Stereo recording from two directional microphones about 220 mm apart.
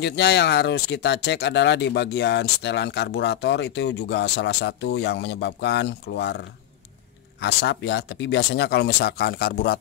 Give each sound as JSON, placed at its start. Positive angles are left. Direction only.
{"t": 0.0, "sound": "speech", "side_deg": 50}
{"t": 7.4, "sound": "speech", "side_deg": 50}